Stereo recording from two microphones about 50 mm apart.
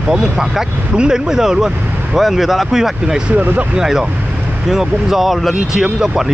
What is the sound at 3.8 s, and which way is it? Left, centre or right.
Speech, centre.